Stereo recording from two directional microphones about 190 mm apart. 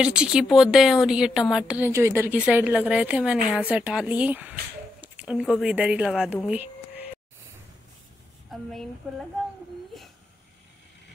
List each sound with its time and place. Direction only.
0.0 s a woman's voice: 5° right (ahead or behind)
8.5 s a woman's voice: centre (ahead or behind)